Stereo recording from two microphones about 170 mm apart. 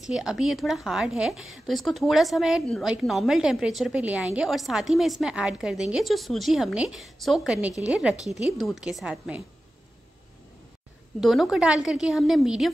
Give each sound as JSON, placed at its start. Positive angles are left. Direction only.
{"t": 0.0, "sound": "a woman's voice", "side_deg": -5}
{"t": 11.1, "sound": "a woman's voice", "side_deg": 0}